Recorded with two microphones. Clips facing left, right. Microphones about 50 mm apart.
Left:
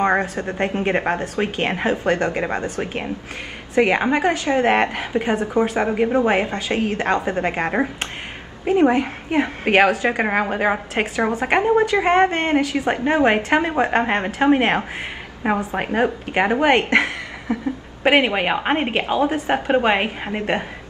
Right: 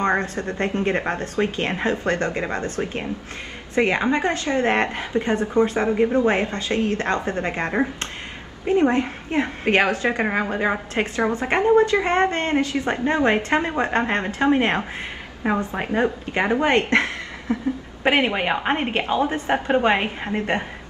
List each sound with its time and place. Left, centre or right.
0.0 s a woman's voice: centre